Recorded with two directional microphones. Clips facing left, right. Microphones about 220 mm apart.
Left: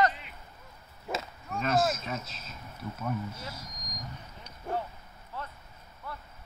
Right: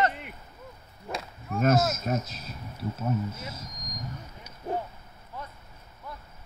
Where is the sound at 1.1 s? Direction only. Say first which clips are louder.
Even; centre (ahead or behind).